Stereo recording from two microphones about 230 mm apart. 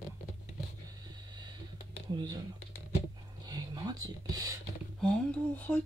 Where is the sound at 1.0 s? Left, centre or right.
Centre.